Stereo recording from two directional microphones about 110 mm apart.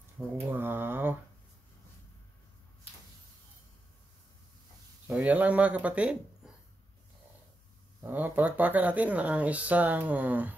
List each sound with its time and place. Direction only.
0.5 s a sound: 20° right (ahead or behind)
5.0 s speech: 10° right (ahead or behind)
8.0 s speech: 15° right (ahead or behind)